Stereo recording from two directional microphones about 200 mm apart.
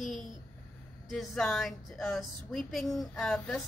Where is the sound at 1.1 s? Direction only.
Centre (ahead or behind).